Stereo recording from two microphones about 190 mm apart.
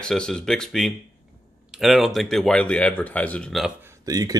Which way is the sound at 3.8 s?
15° right (ahead or behind).